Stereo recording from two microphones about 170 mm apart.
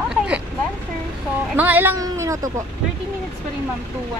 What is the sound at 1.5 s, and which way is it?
Speech, 10° right (ahead or behind).